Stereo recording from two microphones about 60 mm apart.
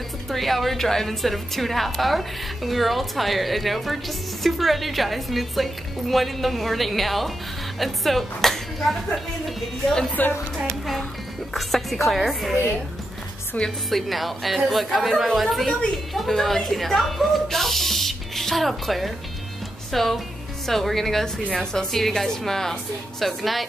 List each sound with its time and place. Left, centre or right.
0.3 s a woman's voice: centre
10.2 s speech: left
11.5 s a woman's voice: centre
13.8 s a woman's voice: centre